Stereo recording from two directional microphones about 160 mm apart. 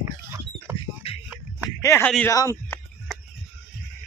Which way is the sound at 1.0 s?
40° left (ahead or behind).